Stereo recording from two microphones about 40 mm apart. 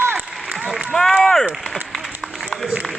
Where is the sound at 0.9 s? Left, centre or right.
Centre.